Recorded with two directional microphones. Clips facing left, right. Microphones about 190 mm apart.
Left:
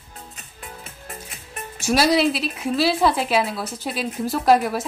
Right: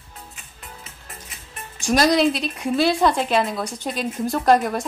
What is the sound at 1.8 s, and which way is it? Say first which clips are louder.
Speech: right 1 dB; 5° left (ahead or behind).